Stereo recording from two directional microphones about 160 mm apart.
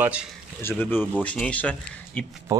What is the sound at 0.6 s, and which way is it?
Speech, 15° left (ahead or behind).